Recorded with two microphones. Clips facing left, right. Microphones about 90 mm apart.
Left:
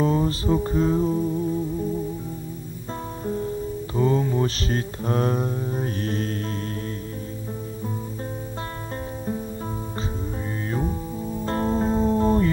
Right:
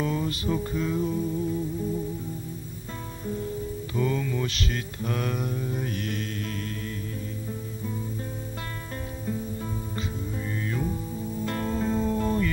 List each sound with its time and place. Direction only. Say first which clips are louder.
0.0 s music: left 6 dB; 35° left (ahead or behind)
3.9 s mantra: left 6 dB; 30° left (ahead or behind)
10.7 s music: left 5 dB; 35° left (ahead or behind)